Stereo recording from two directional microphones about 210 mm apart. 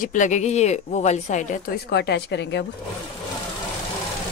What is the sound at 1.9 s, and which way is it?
Speech, 50° left (ahead or behind).